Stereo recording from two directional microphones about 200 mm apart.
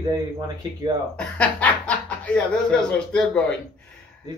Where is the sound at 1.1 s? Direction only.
5° left (ahead or behind).